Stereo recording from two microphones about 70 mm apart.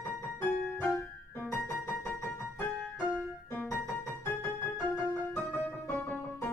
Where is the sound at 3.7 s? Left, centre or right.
Left.